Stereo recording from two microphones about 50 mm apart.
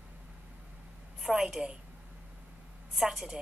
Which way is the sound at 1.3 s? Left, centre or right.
Centre.